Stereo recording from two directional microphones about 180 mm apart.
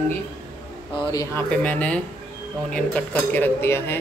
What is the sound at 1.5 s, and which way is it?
A man's voice, 5° left (ahead or behind).